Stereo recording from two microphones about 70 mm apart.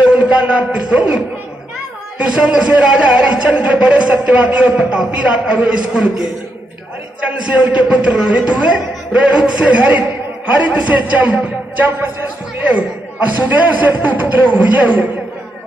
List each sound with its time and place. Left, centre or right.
0.1 s music: centre
2.1 s a man's voice: centre